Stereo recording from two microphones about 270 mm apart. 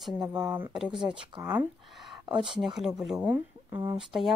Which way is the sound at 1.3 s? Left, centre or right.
Centre.